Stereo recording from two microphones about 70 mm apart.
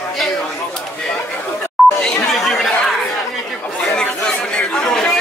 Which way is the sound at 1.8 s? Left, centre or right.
Centre.